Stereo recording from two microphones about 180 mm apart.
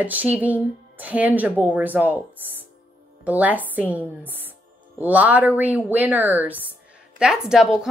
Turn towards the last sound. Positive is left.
turn(degrees=-5)  # may be behind; listen again after turning